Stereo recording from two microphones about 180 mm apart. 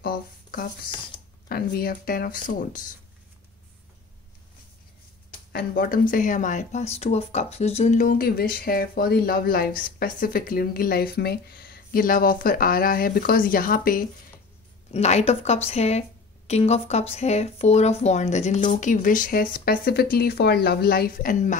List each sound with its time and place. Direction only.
0.0 s a sound: 55° left (ahead or behind)
1.5 s speech: 55° left (ahead or behind)
5.5 s speech: 55° left (ahead or behind)
14.9 s a woman's voice: 35° left (ahead or behind)
18.8 s speech: 45° left (ahead or behind)